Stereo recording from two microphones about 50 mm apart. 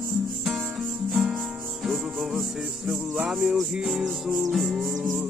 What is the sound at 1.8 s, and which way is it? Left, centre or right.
Music, centre.